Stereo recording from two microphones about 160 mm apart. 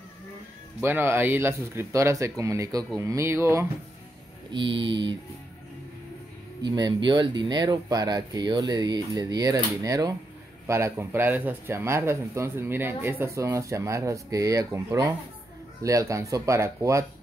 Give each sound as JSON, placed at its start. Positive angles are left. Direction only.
{"t": 0.7, "sound": "speech", "side_deg": -15}
{"t": 4.5, "sound": "mantra", "side_deg": -30}
{"t": 6.6, "sound": "speech", "side_deg": -25}